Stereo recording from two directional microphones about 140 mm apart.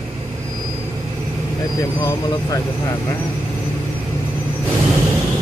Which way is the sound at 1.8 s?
25° left (ahead or behind).